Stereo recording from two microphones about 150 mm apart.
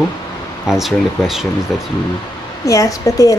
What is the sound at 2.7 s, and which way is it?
Speech, 20° left (ahead or behind).